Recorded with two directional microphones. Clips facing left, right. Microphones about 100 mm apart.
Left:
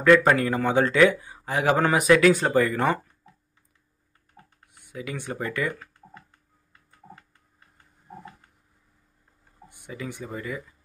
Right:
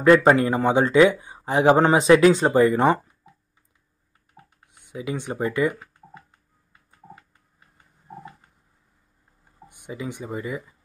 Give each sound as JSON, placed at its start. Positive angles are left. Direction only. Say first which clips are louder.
{"t": 0.0, "sound": "speech", "louder": "right 3 dB", "side_deg": -25}
{"t": 4.4, "sound": "typing", "louder": "right 2 dB", "side_deg": -15}
{"t": 4.7, "sound": "speech", "louder": "right 5 dB", "side_deg": -20}
{"t": 9.7, "sound": "speech", "louder": "right 3 dB", "side_deg": -20}